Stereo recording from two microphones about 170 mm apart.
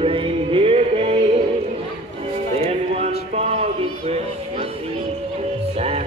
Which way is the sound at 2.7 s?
35° right (ahead or behind).